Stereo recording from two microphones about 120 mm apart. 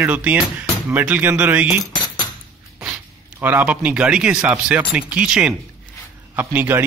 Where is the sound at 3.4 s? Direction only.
15° right (ahead or behind).